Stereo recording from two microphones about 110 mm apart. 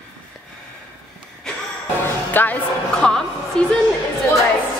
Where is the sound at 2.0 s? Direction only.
15° left (ahead or behind).